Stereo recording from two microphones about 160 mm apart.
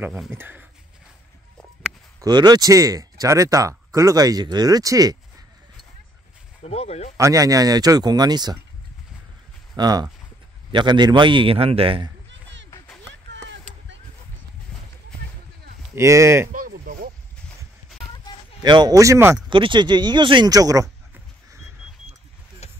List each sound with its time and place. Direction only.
0.3 s speech: 10° right (ahead or behind)
2.2 s speech: 25° right (ahead or behind)
6.6 s speech: 40° left (ahead or behind)
7.2 s speech: 20° right (ahead or behind)
9.8 s a man's voice: 25° right (ahead or behind)
13.3 s a sound: 90° right
15.9 s speech: 20° right (ahead or behind)
16.5 s a sound: 60° right (ahead or behind)
18.6 s speech: 25° right (ahead or behind)
19.5 s speech: 30° right (ahead or behind)
22.6 s a sound: 40° left (ahead or behind)